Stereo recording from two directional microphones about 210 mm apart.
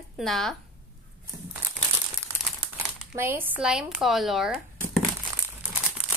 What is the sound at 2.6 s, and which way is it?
Speech, 10° right (ahead or behind).